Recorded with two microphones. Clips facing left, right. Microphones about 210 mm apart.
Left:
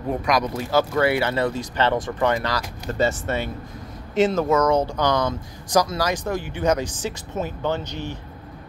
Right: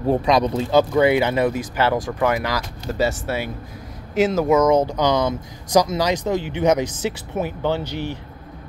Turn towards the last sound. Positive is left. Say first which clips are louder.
# right 3 dB
turn(degrees=-15)  # may be behind; listen again after turning